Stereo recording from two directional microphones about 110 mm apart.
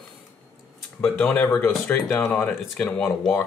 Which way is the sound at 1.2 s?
15° left (ahead or behind).